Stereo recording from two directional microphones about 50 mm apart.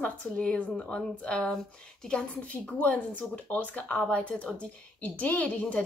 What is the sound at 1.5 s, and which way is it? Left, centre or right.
Speech, centre.